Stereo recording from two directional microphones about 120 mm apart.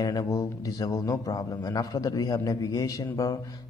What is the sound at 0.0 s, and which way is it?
Speech, 35° left (ahead or behind).